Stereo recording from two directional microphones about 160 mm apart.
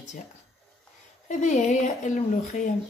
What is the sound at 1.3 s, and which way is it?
A woman's voice, 50° left (ahead or behind).